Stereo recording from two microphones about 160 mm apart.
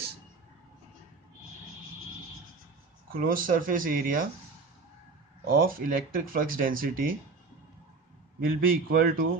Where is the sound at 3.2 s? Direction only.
60° right (ahead or behind).